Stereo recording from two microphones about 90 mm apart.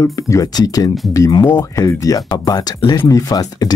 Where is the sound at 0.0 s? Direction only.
40° left (ahead or behind).